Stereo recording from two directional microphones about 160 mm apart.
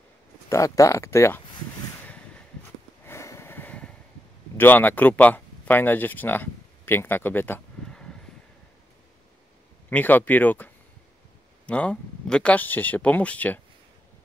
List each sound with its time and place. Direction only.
0.5 s speech: 20° left (ahead or behind)
2.0 s a sound: 5° left (ahead or behind)
4.6 s speech: 10° left (ahead or behind)
9.8 s speech: 10° left (ahead or behind)